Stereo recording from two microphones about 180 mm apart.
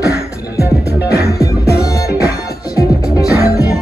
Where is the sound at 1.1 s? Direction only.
60° left (ahead or behind).